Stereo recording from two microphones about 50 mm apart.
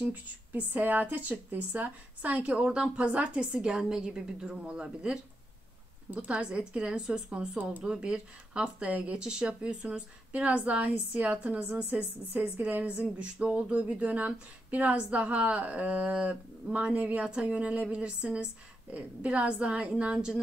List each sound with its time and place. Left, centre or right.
0.1 s a woman's voice: right
7.1 s a woman's voice: centre
7.3 s a woman's voice: right
7.8 s speech: centre
9.2 s speech: centre; by 12.8 s right
12.8 s a woman's voice: right
17.2 s speech: right